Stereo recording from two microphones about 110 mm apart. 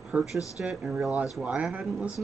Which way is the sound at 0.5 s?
Centre (ahead or behind).